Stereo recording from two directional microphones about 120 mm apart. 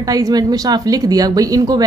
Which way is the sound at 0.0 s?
30° right (ahead or behind).